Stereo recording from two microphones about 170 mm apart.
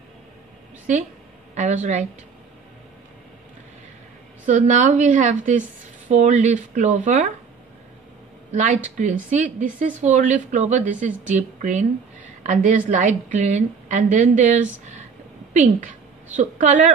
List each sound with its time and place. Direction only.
1.5 s a woman's voice: 45° right (ahead or behind)
4.5 s a woman's voice: 45° right (ahead or behind)
8.5 s a woman's voice: 45° right (ahead or behind)
16.3 s a woman's voice: 45° right (ahead or behind)